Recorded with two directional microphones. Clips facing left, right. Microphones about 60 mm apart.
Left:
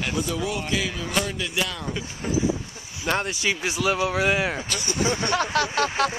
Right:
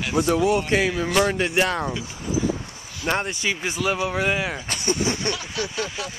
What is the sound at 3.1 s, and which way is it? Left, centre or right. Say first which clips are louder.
Speech: right 1 dB; right.